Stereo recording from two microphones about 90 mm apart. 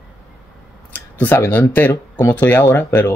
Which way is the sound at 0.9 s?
20° left (ahead or behind).